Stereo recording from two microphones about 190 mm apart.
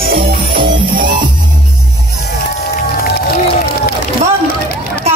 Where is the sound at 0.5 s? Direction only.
25° right (ahead or behind).